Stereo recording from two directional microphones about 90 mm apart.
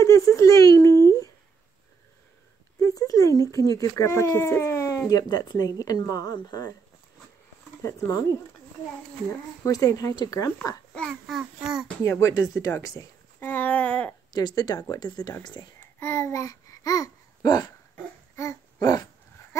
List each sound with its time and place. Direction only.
0.0 s a sound: 35° left (ahead or behind)
2.8 s speech: 40° left (ahead or behind)
7.8 s speech: 40° left (ahead or behind)
9.7 s speech: 40° left (ahead or behind)
10.9 s speech: centre (ahead or behind)
12.0 s speech: 35° left (ahead or behind)
13.4 s a sound: 20° left (ahead or behind)
14.3 s speech: 45° left (ahead or behind)
15.8 s babbling: 25° left (ahead or behind); by 17.6 s 50° left (ahead or behind)
17.9 s dog: 30° left (ahead or behind)
19.5 s a sound: 30° left (ahead or behind)